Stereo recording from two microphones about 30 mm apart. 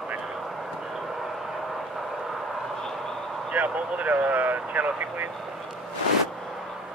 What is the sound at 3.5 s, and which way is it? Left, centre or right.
Speech, right.